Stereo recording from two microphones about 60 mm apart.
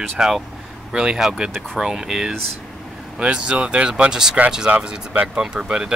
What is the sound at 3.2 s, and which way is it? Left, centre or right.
Speech, centre.